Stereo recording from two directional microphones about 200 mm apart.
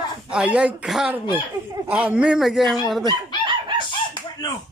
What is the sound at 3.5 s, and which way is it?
Chicken, 25° right (ahead or behind).